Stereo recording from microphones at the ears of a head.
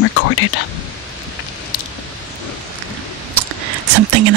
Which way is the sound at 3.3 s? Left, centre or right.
Right.